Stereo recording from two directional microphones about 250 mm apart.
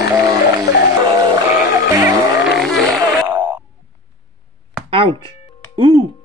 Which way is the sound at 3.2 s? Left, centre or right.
Centre.